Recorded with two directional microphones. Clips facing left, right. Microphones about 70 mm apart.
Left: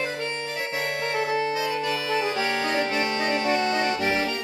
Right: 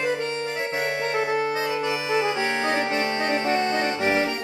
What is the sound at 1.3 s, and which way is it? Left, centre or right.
Accordion, centre.